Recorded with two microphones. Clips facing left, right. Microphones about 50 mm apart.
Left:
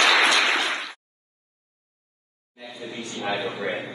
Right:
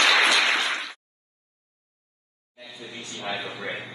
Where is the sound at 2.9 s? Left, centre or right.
Left.